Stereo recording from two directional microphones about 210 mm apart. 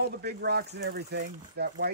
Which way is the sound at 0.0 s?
50° right (ahead or behind).